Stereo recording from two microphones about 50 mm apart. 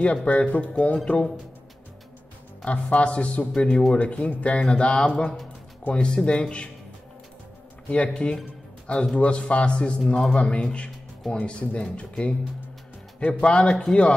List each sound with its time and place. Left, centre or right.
0.0 s a man's voice: left
2.6 s a man's voice: left
4.6 s a sound: centre
5.9 s a man's voice: left
7.9 s a man's voice: left
13.4 s a man's voice: left